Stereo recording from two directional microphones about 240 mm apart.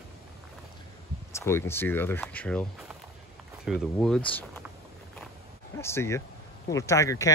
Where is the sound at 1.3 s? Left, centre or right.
Centre.